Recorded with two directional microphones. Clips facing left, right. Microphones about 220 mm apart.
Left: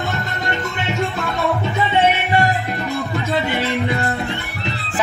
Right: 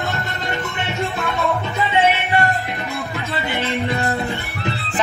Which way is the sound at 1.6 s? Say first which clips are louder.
Left 2 dB; 20° left (ahead or behind).